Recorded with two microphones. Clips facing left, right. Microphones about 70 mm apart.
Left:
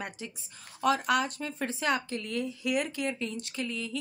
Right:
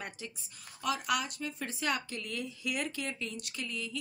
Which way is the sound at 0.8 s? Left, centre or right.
Left.